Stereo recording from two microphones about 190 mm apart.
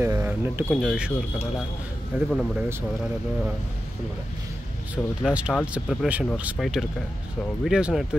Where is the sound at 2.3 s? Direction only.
Centre (ahead or behind).